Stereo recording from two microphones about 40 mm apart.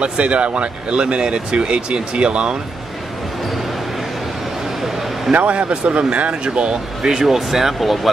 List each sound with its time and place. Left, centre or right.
0.0 s speech: right
5.3 s speech: right
7.0 s speech: centre